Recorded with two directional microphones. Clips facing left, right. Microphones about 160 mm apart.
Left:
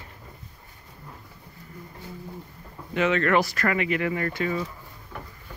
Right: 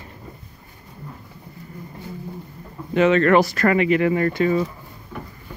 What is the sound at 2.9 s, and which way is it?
Speech, 30° right (ahead or behind).